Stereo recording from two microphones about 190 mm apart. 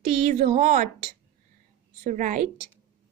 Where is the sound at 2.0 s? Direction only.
40° right (ahead or behind).